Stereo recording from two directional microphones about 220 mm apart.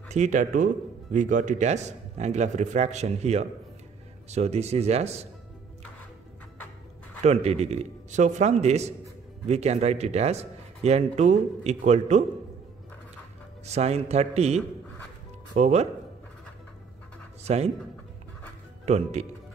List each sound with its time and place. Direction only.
0.1 s a man's voice: 35° right (ahead or behind)
7.2 s speech: 30° right (ahead or behind)
13.7 s speech: 30° right (ahead or behind)
17.4 s a sound: 30° right (ahead or behind)
18.9 s speech: 30° right (ahead or behind)